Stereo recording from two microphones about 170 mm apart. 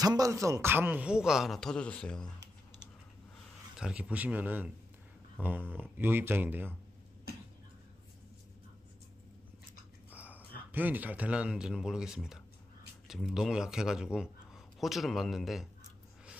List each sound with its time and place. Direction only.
0.0 s speech: 20° right (ahead or behind); by 2.3 s 5° left (ahead or behind)
3.7 s speech: 5° right (ahead or behind)
10.1 s a sound: 10° right (ahead or behind)
10.7 s speech: 10° right (ahead or behind)